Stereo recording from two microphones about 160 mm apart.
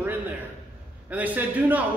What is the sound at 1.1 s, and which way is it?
Speech, 10° right (ahead or behind).